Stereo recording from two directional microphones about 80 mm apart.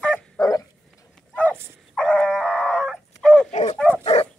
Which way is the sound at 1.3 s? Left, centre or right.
Centre.